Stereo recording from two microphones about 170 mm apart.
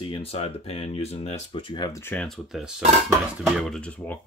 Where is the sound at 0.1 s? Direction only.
35° left (ahead or behind).